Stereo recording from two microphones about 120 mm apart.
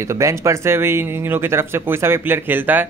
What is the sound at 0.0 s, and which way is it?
Speech, 25° right (ahead or behind).